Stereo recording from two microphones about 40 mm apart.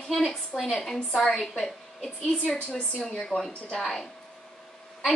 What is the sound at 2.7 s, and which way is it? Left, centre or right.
Speech, left.